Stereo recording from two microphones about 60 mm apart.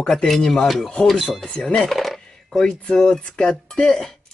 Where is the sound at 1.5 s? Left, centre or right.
Centre.